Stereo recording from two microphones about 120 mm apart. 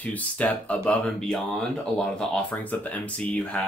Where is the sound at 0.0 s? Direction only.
15° left (ahead or behind).